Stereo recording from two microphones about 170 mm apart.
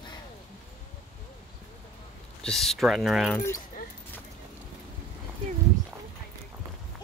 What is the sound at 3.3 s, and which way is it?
Speech, 15° left (ahead or behind).